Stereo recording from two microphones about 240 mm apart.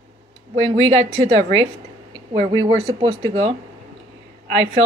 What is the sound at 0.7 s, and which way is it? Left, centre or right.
Speech, right.